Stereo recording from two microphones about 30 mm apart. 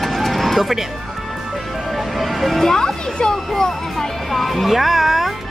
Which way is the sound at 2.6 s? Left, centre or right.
Centre.